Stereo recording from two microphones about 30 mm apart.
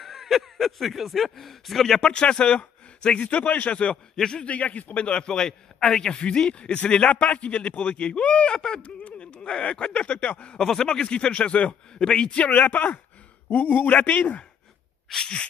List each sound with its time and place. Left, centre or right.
0.0 s speech: centre
2.0 s a man's voice: left
3.2 s a man's voice: left
3.9 s a man's voice: left
4.5 s a man's voice: left
4.9 s a man's voice: left
7.1 s a man's voice: left
8.5 s a man's voice: left
8.8 s a sound: left
9.4 s a man's voice: left
12.0 s a man's voice: left
12.5 s speech: left
13.5 s a man's voice: left
15.0 s sneeze: left